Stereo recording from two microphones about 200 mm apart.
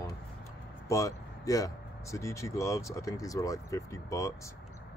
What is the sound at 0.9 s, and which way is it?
Speech, 15° left (ahead or behind).